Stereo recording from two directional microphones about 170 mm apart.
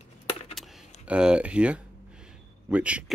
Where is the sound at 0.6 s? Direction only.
5° right (ahead or behind).